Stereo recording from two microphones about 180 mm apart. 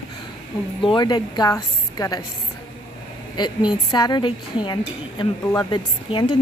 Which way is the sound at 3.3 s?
25° left (ahead or behind).